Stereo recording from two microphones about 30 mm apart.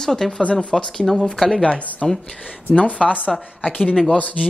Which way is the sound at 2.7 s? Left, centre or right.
Left.